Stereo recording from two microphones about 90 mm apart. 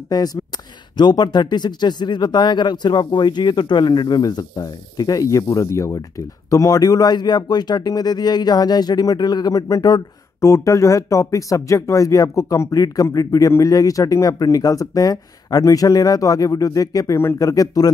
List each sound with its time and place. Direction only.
0.1 s speech: 45° left (ahead or behind)
10.4 s speech: 35° left (ahead or behind)